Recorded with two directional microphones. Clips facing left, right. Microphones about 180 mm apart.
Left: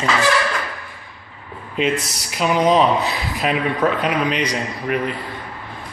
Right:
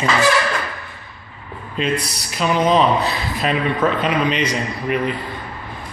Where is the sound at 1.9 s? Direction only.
45° left (ahead or behind).